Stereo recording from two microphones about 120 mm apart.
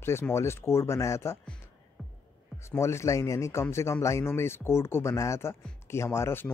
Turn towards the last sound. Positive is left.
turn(degrees=20)  # may be behind; listen again after turning